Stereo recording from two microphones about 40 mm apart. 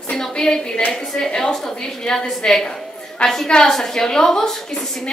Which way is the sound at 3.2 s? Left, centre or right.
Left.